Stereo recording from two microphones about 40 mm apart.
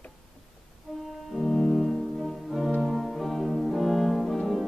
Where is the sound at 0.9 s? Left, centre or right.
Centre.